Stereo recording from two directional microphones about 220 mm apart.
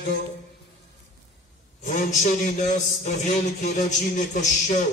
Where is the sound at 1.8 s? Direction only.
35° left (ahead or behind).